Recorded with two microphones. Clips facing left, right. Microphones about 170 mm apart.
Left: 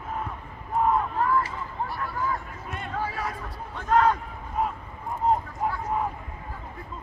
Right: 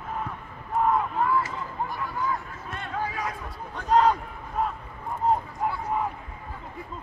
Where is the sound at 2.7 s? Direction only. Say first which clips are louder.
Even; 5° left (ahead or behind).